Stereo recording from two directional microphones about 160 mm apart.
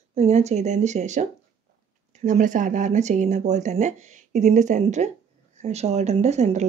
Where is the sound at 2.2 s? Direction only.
55° right (ahead or behind).